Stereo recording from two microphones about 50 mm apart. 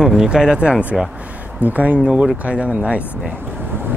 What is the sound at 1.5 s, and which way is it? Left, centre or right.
Speech, right.